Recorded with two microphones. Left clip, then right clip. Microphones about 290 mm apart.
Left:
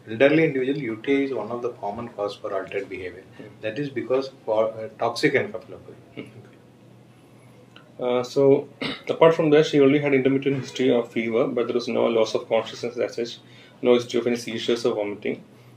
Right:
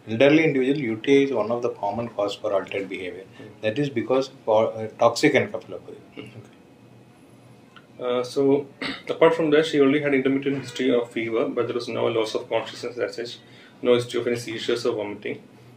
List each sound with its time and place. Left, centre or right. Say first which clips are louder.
0.1 s speech: right 1 dB; right
8.0 s speech: left 2 dB; left